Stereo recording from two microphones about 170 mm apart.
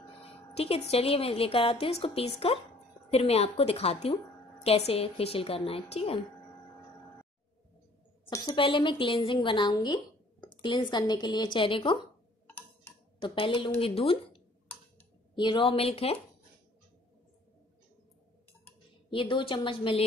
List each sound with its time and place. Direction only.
0.6 s a woman's voice: 35° left (ahead or behind)
8.3 s a woman's voice: 25° left (ahead or behind)
13.2 s a woman's voice: 30° left (ahead or behind)
15.3 s a woman's voice: 30° left (ahead or behind)
19.0 s a woman's voice: 30° left (ahead or behind)